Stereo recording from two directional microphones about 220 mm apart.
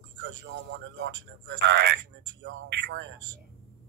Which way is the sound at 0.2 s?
55° right (ahead or behind).